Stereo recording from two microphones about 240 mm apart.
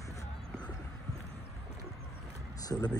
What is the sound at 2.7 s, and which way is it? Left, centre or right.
Speech, centre.